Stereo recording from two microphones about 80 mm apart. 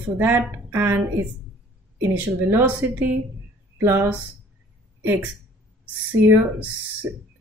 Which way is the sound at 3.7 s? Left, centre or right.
Right.